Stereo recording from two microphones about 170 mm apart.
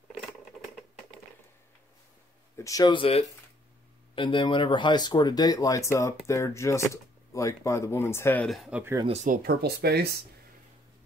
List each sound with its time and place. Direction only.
2.5 s speech: 20° left (ahead or behind)
8.5 s speech: 5° right (ahead or behind)
8.9 s speech: 30° right (ahead or behind)
9.2 s speech: 55° right (ahead or behind)